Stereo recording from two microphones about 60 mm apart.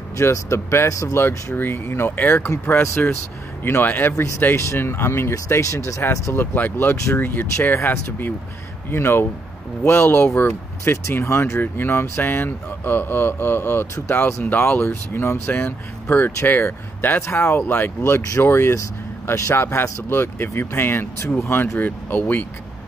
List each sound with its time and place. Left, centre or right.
0.2 s speech: left
1.1 s speech: left
5.5 s speech: left
6.3 s speech: left
8.9 s speech: left
11.6 s speech: left